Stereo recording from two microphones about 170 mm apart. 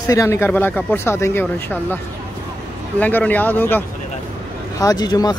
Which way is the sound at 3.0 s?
10° left (ahead or behind).